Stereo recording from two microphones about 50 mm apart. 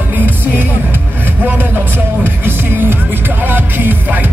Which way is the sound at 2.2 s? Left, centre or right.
Right.